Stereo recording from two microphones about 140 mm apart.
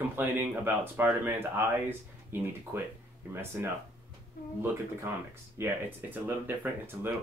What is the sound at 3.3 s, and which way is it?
Speech, 15° right (ahead or behind).